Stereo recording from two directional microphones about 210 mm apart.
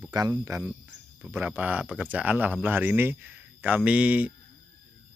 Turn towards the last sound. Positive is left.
turn(degrees=-5)  # may be behind; listen again after turning